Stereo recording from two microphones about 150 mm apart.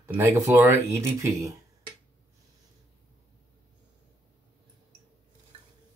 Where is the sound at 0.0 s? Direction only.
15° right (ahead or behind).